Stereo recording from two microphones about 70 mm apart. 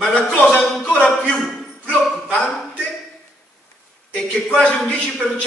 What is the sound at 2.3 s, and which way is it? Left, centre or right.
Speech, centre.